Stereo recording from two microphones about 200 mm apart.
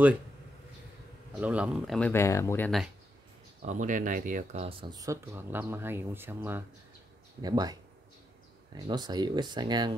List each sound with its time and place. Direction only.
1.4 s speech: 5° right (ahead or behind); by 2.8 s 10° left (ahead or behind)
3.6 s speech: 40° right (ahead or behind); by 7.7 s 20° right (ahead or behind)
8.7 s speech: 20° right (ahead or behind)